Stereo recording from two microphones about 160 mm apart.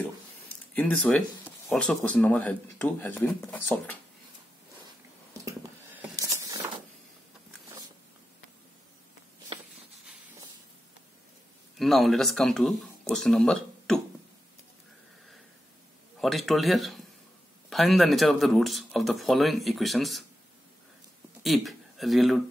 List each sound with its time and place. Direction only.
0.7 s speech: 5° left (ahead or behind)
5.4 s a sound: 20° right (ahead or behind)
11.8 s speech: centre (ahead or behind)
16.2 s speech: centre (ahead or behind)
21.4 s speech: centre (ahead or behind)